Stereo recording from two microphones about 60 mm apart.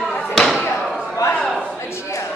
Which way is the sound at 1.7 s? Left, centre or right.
Left.